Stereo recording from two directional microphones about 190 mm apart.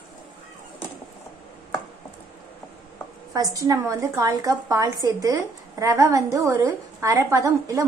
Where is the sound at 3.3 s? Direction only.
15° right (ahead or behind).